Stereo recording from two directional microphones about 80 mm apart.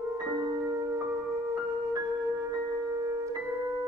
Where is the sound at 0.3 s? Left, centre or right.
Right.